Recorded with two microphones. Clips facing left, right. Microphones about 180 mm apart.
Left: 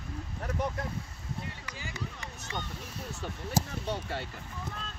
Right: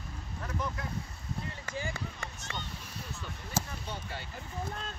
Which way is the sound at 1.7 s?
50° right (ahead or behind).